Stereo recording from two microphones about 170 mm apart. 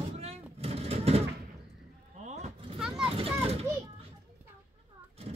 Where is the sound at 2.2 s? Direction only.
40° right (ahead or behind).